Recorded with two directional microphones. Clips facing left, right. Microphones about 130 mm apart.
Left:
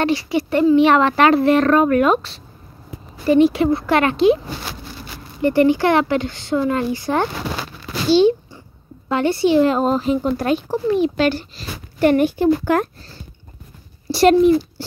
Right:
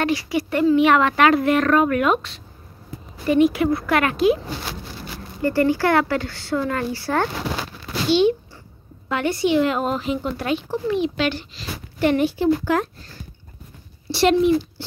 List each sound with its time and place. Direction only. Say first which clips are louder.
0.0 s speech: left 3 dB; 25° left (ahead or behind)
5.4 s speech: left 4 dB; 20° left (ahead or behind)
8.1 s speech: left 4 dB; 35° left (ahead or behind); by 12.8 s 50° left (ahead or behind)
14.0 s speech: left 5 dB; 40° left (ahead or behind)